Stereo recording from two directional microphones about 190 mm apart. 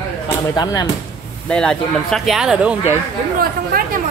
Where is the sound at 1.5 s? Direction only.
5° left (ahead or behind).